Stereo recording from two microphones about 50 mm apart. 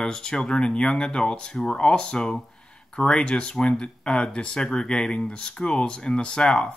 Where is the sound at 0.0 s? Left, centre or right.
Centre.